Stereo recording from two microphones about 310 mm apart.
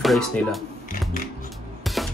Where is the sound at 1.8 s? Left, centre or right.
Centre.